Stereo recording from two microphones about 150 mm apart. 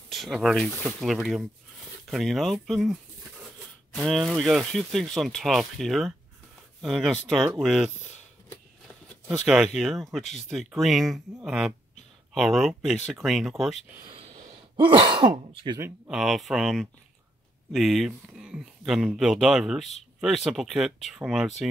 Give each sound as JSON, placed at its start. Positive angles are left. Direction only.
{"t": 0.1, "sound": "speech", "side_deg": 0}
{"t": 9.8, "sound": "speech", "side_deg": 0}
{"t": 14.0, "sound": "speech", "side_deg": -35}
{"t": 16.1, "sound": "speech", "side_deg": 0}